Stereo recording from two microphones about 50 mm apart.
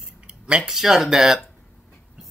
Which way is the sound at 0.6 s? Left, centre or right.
Centre.